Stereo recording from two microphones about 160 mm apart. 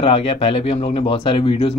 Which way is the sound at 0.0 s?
35° left (ahead or behind).